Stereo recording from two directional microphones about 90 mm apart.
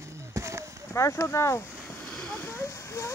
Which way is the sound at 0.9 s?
35° left (ahead or behind).